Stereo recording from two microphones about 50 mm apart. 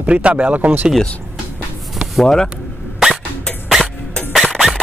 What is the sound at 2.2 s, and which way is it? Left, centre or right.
Speech, centre.